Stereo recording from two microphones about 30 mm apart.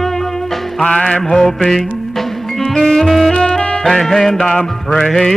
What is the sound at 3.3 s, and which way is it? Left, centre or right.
Music, left.